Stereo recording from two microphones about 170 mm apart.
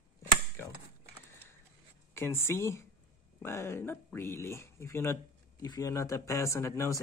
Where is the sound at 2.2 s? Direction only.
15° left (ahead or behind).